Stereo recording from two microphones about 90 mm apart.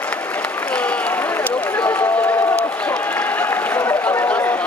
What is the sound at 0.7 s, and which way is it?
Run, 15° left (ahead or behind).